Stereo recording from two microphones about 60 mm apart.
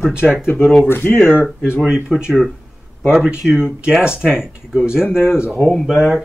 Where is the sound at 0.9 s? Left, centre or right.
Left.